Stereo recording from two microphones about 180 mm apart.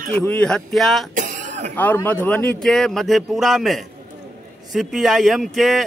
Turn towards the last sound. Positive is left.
turn(degrees=0)  # may be behind; listen again after turning